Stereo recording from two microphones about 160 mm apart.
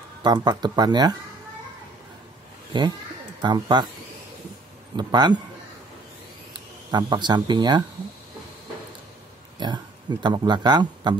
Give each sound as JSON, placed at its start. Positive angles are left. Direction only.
{"t": 0.2, "sound": "speech", "side_deg": -25}
{"t": 2.7, "sound": "speech", "side_deg": -30}
{"t": 4.9, "sound": "speech", "side_deg": -25}
{"t": 6.9, "sound": "speech", "side_deg": -30}
{"t": 9.6, "sound": "speech", "side_deg": -30}